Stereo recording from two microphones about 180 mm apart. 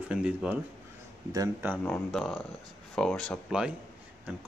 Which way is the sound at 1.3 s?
20° right (ahead or behind).